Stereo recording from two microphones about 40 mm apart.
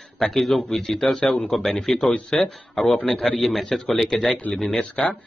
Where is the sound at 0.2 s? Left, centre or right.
Centre.